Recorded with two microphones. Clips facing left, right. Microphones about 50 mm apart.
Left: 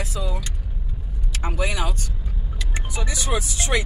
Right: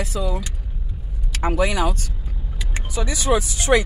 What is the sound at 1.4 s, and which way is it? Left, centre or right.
Speech, right.